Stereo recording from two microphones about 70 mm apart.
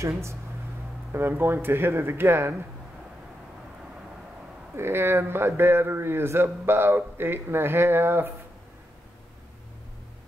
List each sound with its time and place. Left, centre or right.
1.1 s a man's voice: right
4.7 s a man's voice: right